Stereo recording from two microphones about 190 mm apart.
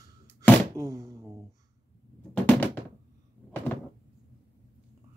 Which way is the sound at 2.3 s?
10° left (ahead or behind).